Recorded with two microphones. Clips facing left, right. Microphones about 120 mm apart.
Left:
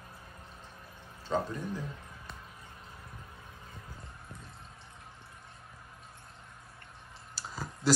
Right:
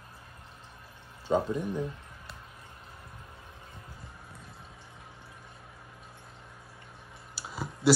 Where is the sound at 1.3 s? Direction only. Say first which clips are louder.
Right 5 dB; 15° right (ahead or behind).